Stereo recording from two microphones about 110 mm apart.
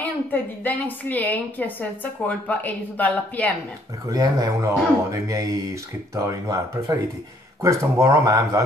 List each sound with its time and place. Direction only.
0.0 s a woman's voice: 15° left (ahead or behind)
4.1 s speech: 35° right (ahead or behind)